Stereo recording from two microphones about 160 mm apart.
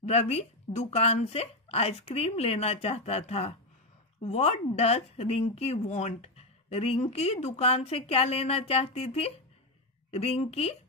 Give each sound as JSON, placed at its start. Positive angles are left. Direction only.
{"t": 0.0, "sound": "speech", "side_deg": 40}